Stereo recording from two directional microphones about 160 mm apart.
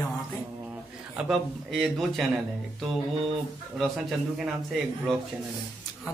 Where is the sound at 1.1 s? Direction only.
Centre (ahead or behind).